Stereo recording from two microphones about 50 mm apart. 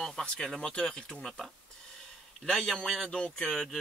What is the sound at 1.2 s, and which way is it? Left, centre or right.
Speech, centre.